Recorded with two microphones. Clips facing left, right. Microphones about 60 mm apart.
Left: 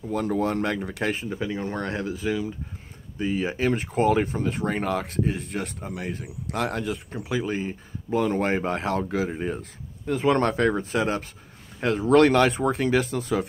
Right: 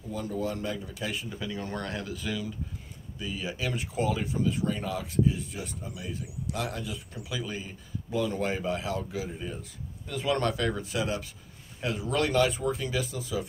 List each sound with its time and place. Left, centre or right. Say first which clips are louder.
0.1 s speech: left 7 dB; left
1.1 s speech: left 6 dB; left
3.2 s speech: left 9 dB; left